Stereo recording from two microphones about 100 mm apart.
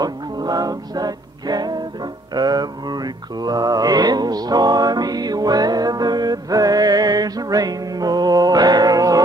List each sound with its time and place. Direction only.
0.0 s music: 40° right (ahead or behind)
2.3 s mantra: 40° right (ahead or behind)